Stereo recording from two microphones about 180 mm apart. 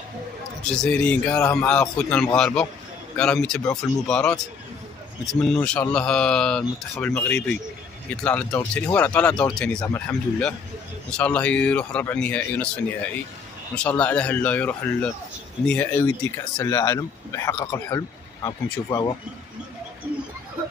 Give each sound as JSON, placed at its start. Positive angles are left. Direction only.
{"t": 0.7, "sound": "a man's voice", "side_deg": 5}